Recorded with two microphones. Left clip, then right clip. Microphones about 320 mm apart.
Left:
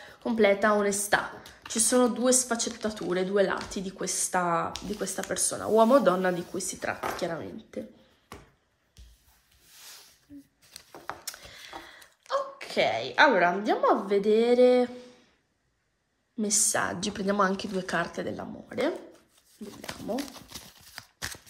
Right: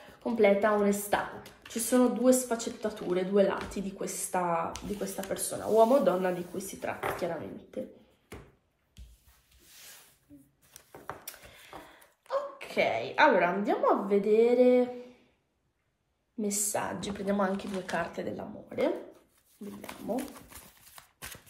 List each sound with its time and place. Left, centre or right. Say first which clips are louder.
0.2 s speech: left 1 dB; left
10.7 s a sound: left 3 dB; left
12.3 s a woman's voice: left 3 dB; left
16.3 s speech: left 5 dB; left
17.6 s speech: left 3 dB; left
18.3 s speech: left 2 dB; left